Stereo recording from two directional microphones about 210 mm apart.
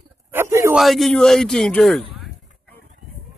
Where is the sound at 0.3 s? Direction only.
10° right (ahead or behind).